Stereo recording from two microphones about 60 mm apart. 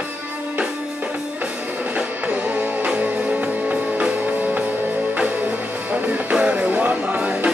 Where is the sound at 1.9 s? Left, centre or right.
Right.